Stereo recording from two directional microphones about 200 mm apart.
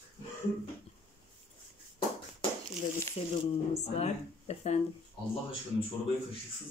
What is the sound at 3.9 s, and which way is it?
Speech, 30° left (ahead or behind).